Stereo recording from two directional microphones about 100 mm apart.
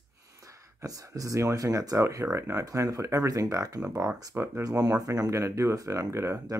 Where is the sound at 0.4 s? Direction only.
35° right (ahead or behind).